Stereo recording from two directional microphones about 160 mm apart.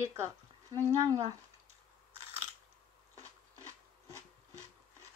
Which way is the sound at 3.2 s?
20° right (ahead or behind).